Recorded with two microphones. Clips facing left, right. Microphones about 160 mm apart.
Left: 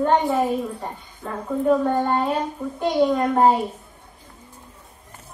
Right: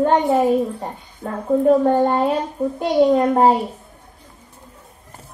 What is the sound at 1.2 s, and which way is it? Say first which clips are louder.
Speech: right 6 dB; 40° right (ahead or behind).